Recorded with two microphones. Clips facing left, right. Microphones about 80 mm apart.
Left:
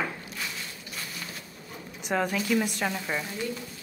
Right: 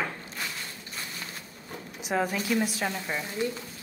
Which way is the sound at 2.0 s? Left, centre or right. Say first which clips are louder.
Left 1 dB; centre.